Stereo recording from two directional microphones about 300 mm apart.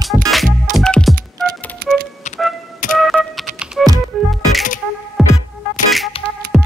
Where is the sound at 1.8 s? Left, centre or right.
Right.